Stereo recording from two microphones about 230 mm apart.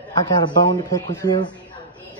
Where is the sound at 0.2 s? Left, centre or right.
Centre.